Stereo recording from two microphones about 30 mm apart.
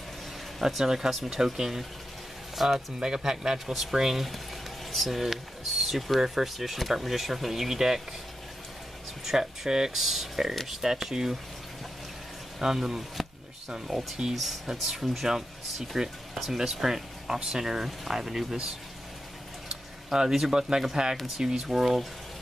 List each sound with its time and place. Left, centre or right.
0.6 s speech: centre
3.0 s speech: right
3.5 s speech: centre
9.2 s speech: centre
9.9 s speech: centre
12.5 s speech: centre
14.3 s speech: centre
14.7 s speech: centre
19.7 s speech: right